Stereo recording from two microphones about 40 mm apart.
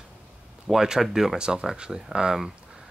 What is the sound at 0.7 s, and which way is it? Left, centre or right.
Speech, centre.